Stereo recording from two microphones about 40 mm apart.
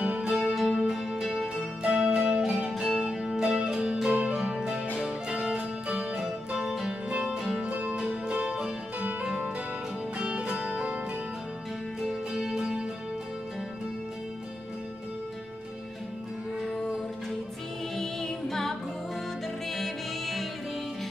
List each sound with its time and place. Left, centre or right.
0.2 s music: right
0.6 s music: centre
1.8 s music: right
2.7 s music: centre
3.3 s music: centre
10.1 s music: right
12.3 s music: centre
17.9 s music: centre